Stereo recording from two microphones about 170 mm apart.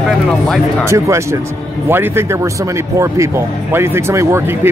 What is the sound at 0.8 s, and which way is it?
Speech, 15° right (ahead or behind).